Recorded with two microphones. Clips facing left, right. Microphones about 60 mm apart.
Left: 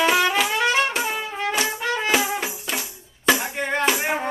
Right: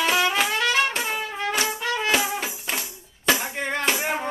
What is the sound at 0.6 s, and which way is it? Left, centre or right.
Trumpet, left.